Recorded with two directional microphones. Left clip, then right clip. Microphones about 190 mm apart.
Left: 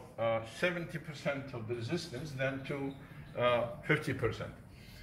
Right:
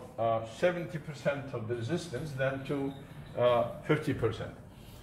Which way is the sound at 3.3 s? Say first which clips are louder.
Right 4 dB; 15° right (ahead or behind).